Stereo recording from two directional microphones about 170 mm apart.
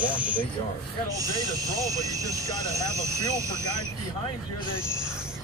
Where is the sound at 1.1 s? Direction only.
20° right (ahead or behind).